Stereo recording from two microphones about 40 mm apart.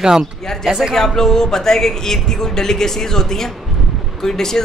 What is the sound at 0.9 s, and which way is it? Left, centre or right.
A man's voice, centre.